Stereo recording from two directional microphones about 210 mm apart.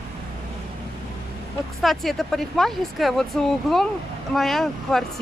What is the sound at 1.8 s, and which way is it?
Speech, centre (ahead or behind).